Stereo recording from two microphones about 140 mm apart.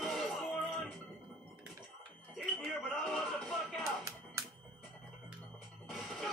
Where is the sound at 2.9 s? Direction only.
5° left (ahead or behind).